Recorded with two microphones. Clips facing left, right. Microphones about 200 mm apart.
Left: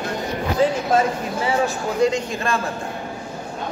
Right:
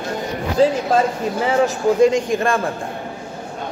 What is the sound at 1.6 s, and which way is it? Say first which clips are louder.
Speech: right 7 dB; 50° right (ahead or behind).